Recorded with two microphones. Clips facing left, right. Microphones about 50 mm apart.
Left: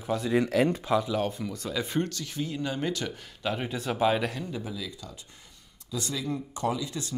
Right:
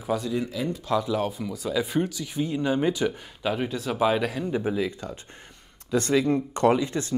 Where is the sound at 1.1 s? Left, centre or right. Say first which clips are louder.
Right 2 dB; centre.